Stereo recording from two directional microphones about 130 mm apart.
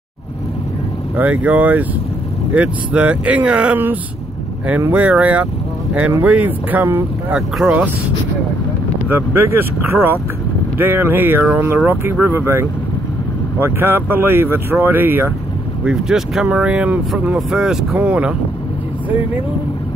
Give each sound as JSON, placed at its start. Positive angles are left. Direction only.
{"t": 1.1, "sound": "speech", "side_deg": -10}
{"t": 9.1, "sound": "speech", "side_deg": -15}
{"t": 10.8, "sound": "speech", "side_deg": -15}
{"t": 15.8, "sound": "speech", "side_deg": -5}